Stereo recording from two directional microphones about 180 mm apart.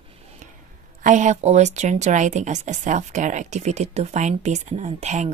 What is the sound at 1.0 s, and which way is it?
Speech, 45° right (ahead or behind).